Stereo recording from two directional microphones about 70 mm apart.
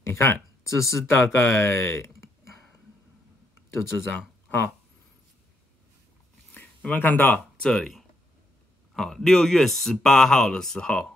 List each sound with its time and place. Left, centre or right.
0.0 s speech: left
3.7 s speech: left
6.5 s speech: left
7.6 s speech: centre
8.9 s speech: centre